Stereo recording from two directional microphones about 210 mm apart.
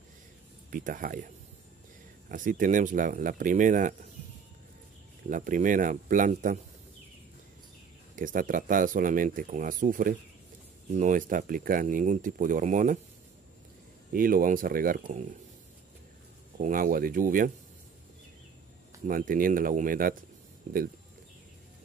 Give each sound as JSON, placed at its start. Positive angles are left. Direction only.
{"t": 0.7, "sound": "speech", "side_deg": -40}
{"t": 5.3, "sound": "speech", "side_deg": -40}
{"t": 8.2, "sound": "speech", "side_deg": -40}
{"t": 14.1, "sound": "speech", "side_deg": -40}
{"t": 16.5, "sound": "speech", "side_deg": -40}
{"t": 19.0, "sound": "speech", "side_deg": -40}